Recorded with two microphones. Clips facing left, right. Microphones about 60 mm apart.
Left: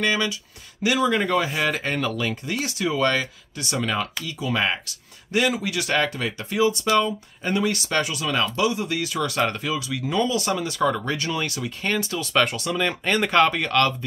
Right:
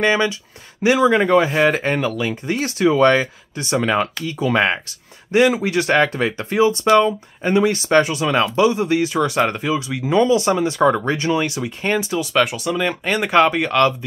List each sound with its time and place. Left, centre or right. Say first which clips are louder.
0.0 s speech: right 6 dB; right
2.0 s speech: right 4 dB; centre
2.4 s speech: right 8 dB; right
5.3 s speech: right 7 dB; right
7.4 s speech: right 7 dB; right